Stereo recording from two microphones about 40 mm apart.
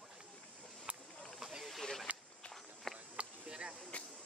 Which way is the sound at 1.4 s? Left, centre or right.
Centre.